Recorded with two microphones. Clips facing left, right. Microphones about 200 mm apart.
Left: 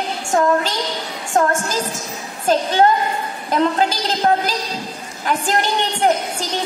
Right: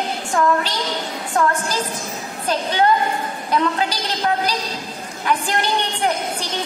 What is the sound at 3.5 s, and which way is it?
A woman's voice, 45° left (ahead or behind).